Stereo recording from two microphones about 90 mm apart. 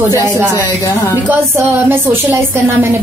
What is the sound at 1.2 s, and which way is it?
Speech, 25° right (ahead or behind).